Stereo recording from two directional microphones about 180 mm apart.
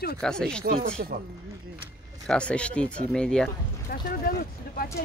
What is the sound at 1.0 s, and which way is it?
Speech, 55° right (ahead or behind).